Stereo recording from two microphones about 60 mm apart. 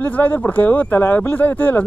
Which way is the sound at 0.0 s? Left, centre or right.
Left.